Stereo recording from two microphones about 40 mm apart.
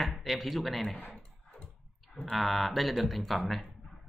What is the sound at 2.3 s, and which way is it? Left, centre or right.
Speech, centre.